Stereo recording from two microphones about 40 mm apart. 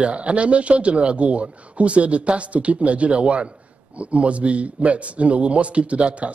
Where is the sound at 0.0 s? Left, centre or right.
Right.